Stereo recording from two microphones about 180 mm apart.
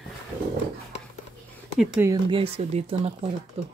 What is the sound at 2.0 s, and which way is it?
Speech, 25° right (ahead or behind).